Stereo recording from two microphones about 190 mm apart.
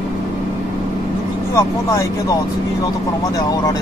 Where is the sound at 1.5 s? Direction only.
15° left (ahead or behind).